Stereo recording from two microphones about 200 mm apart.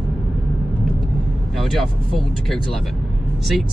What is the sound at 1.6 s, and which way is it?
Speech, centre (ahead or behind).